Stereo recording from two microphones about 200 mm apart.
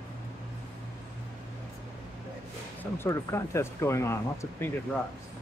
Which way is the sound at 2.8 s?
15° left (ahead or behind).